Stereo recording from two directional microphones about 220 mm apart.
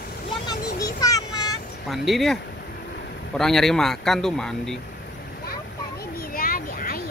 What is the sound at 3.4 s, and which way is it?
Speech, centre (ahead or behind).